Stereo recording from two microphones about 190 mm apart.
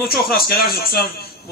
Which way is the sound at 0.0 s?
50° left (ahead or behind).